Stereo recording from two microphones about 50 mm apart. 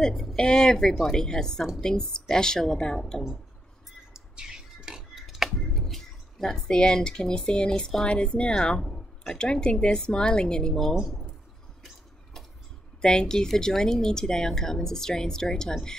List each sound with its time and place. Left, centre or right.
0.0 s speech: centre
4.1 s a sound: centre
5.1 s speech: centre
13.0 s speech: centre